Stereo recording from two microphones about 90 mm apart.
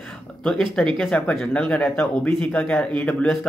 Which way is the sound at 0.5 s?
5° left (ahead or behind).